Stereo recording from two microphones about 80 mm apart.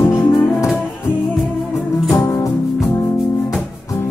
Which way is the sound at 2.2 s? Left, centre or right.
Left.